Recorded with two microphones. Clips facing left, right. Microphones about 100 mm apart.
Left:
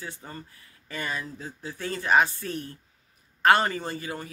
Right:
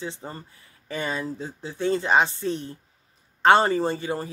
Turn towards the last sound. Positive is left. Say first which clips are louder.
# right 8 dB
turn(degrees=-30)  # may be behind; listen again after turning